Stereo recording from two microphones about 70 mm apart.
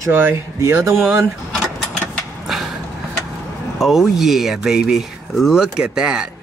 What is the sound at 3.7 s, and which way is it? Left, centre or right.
Speech, centre.